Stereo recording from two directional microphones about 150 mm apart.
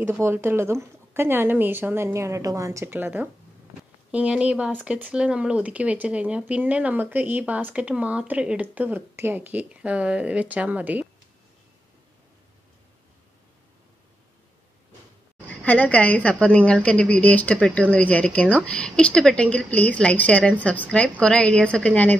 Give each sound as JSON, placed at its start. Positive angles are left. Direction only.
{"t": 0.0, "sound": "speech", "side_deg": -15}
{"t": 15.6, "sound": "a woman's voice", "side_deg": 10}